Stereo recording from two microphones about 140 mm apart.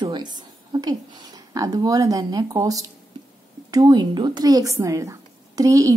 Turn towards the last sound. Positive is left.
turn(degrees=-25)  # may be behind; listen again after turning